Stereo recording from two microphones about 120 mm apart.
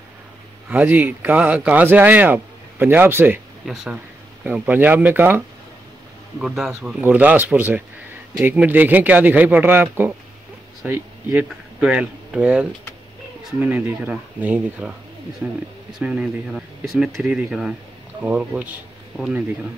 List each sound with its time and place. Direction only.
0.7 s speech: 15° right (ahead or behind)
3.6 s speech: 5° right (ahead or behind)
6.4 s speech: 5° right (ahead or behind)
11.8 s speech: 5° right (ahead or behind)